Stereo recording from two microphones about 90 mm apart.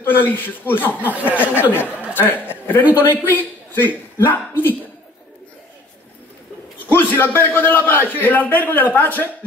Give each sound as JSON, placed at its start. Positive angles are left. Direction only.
{"t": 0.0, "sound": "a man's voice", "side_deg": 25}
{"t": 1.0, "sound": "speech", "side_deg": -15}
{"t": 2.1, "sound": "a man's voice", "side_deg": 20}
{"t": 6.9, "sound": "a man's voice", "side_deg": 25}